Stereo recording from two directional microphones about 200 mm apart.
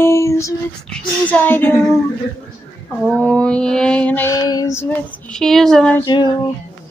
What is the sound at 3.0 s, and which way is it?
Mantra, 5° left (ahead or behind).